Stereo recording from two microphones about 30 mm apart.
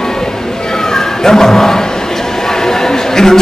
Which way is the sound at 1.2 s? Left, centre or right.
Centre.